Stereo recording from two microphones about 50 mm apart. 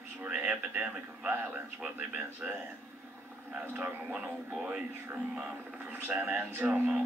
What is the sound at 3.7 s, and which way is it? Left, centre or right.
A man's voice, right.